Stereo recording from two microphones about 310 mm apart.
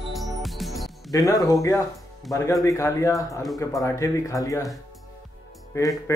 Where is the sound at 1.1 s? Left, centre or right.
Centre.